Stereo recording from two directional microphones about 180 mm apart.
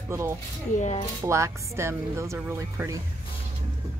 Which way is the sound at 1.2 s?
15° right (ahead or behind).